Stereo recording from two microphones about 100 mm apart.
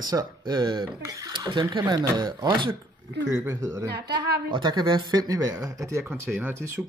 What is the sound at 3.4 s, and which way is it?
Speech, 35° right (ahead or behind).